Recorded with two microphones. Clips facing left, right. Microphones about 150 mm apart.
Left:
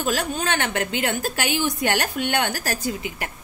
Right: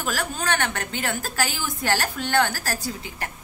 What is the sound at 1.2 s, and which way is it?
A woman's voice, 20° left (ahead or behind).